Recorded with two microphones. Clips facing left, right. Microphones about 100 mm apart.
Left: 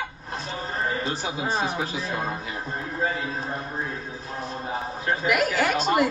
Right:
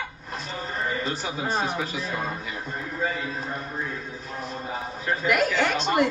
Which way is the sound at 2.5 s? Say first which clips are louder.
Left 1 dB; 35° left (ahead or behind).